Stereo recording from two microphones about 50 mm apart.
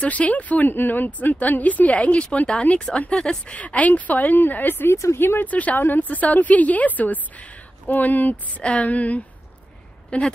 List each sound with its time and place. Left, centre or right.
0.0 s speech: left
5.1 s speech: left
5.4 s a woman's voice: left